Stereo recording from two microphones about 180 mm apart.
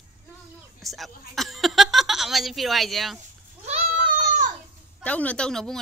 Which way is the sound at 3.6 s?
35° right (ahead or behind).